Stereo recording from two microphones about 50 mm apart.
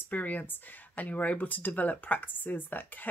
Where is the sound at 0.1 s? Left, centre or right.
Left.